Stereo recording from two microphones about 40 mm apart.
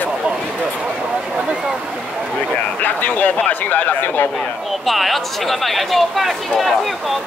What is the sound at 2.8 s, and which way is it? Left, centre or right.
Speech, left.